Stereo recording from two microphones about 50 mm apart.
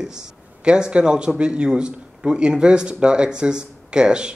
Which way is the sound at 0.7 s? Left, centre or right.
Centre.